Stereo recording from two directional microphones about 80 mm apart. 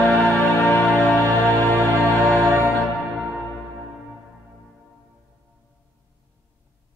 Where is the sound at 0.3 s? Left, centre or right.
Left.